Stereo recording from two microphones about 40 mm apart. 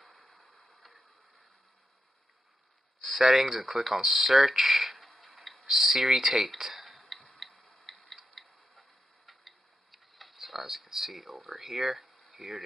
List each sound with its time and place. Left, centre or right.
0.0 s a sound: centre
3.0 s speech: centre
5.2 s tick-tock: centre
12.3 s speech: centre